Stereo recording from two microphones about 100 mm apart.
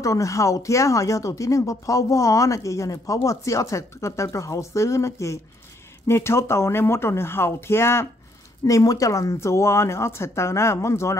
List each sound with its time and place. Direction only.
0.0 s speech: 30° left (ahead or behind)